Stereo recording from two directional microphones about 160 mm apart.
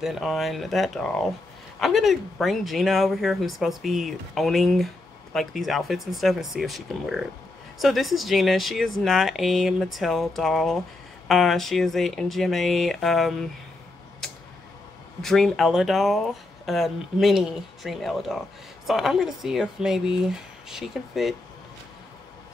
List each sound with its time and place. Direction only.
0.0 s speech: centre (ahead or behind)
15.2 s speech: centre (ahead or behind)